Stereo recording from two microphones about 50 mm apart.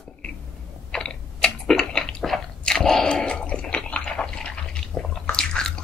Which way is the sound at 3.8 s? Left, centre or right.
Centre.